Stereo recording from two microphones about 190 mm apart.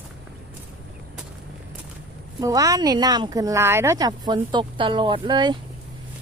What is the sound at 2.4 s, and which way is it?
Speech, 20° right (ahead or behind).